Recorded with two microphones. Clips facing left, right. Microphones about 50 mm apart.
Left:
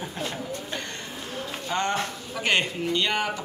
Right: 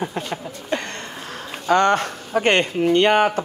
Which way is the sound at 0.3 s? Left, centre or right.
Right.